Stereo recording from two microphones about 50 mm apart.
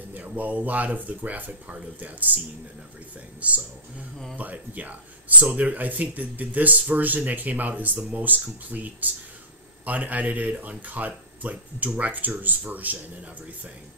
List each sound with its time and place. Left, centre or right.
0.1 s speech: right
3.3 s speech: right